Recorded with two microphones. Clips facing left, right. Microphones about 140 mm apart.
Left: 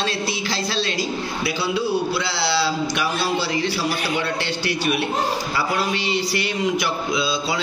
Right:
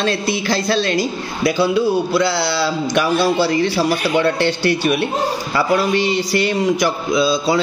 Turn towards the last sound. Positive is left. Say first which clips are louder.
# right 7 dB
turn(degrees=-40)  # may be behind; listen again after turning